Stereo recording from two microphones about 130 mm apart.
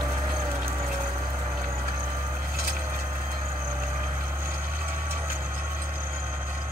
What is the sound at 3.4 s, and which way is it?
Vehicle, 45° right (ahead or behind).